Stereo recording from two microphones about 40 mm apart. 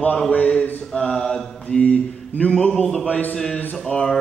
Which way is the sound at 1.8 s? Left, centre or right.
Left.